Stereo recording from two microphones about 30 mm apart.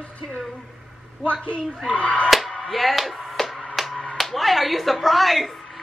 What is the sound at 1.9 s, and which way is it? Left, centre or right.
Speech, left.